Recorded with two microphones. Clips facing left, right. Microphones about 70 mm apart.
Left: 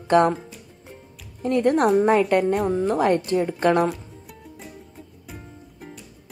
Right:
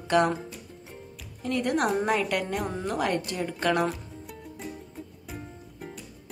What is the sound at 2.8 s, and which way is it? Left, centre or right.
Speech, left.